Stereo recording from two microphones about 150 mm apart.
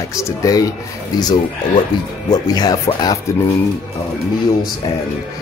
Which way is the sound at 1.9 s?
30° left (ahead or behind).